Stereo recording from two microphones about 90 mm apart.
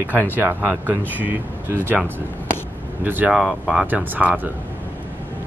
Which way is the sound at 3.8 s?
20° right (ahead or behind).